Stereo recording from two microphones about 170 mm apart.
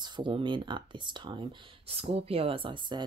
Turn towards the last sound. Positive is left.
turn(degrees=-25)  # may be behind; listen again after turning